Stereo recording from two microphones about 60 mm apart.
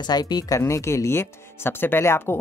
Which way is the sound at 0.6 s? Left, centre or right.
Left.